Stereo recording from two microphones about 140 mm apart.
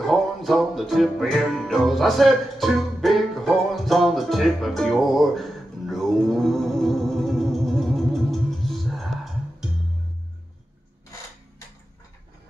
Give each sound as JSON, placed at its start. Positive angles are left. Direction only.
{"t": 0.0, "sound": "music", "side_deg": 0}